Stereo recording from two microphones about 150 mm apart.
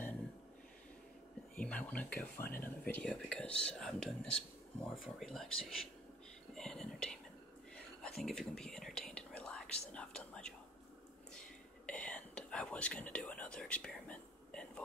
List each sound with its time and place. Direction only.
1.6 s speech: 10° left (ahead or behind)
6.5 s whispering: 5° left (ahead or behind)
8.2 s whispering: 5° left (ahead or behind)